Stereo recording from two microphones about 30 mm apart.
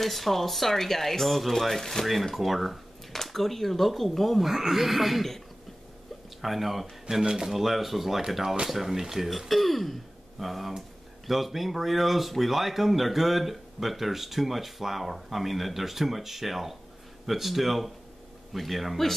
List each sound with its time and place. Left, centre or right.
0.0 s speech: centre
2.3 s speech: centre
3.1 s speech: centre
6.4 s speech: centre
7.2 s speech: centre
7.5 s speech: centre
9.5 s speech: centre